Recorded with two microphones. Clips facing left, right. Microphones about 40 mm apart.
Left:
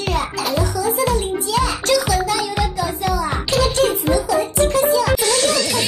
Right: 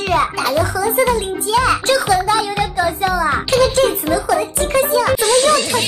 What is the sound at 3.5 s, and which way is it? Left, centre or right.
Music, right.